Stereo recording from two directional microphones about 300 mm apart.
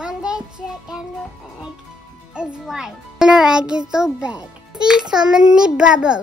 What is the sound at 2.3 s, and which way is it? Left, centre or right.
A child's voice, centre.